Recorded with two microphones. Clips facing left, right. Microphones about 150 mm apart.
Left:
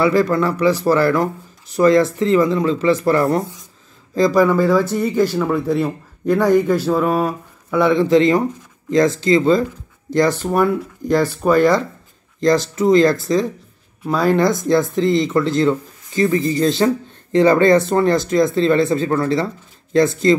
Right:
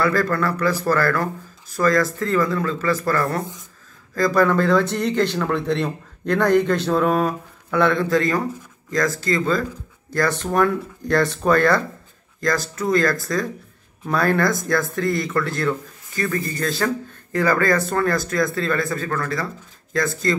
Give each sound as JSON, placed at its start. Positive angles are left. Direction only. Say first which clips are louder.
{"t": 0.0, "sound": "speech", "louder": "left 5 dB", "side_deg": 15}
{"t": 7.9, "sound": "speech", "louder": "left 7 dB", "side_deg": 20}
{"t": 10.4, "sound": "speech", "louder": "left 3 dB", "side_deg": 10}